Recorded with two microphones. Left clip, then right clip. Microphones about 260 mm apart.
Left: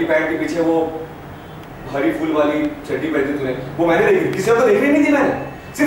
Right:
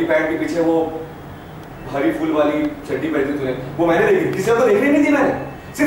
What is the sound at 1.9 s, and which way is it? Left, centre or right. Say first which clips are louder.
A man's voice: even; centre.